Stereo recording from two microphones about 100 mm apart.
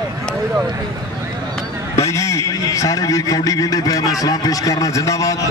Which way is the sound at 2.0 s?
30° left (ahead or behind).